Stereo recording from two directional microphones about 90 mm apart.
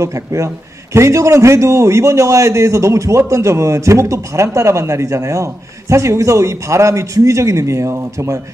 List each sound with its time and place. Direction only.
0.0 s a man's voice: 35° right (ahead or behind)